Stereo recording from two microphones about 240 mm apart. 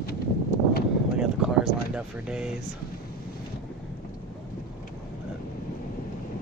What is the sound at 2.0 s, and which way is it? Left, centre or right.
Speech, centre.